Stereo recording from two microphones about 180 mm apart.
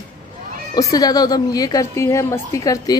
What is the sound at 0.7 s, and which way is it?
A woman's voice, 20° left (ahead or behind).